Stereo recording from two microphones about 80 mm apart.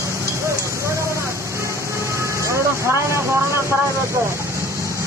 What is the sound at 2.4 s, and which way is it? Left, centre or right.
Vehicle, right.